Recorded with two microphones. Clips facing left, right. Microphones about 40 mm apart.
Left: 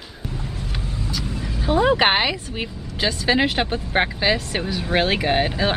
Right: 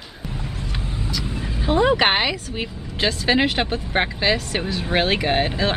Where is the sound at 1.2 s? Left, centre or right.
Centre.